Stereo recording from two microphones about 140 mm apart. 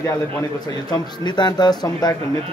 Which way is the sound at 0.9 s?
30° left (ahead or behind).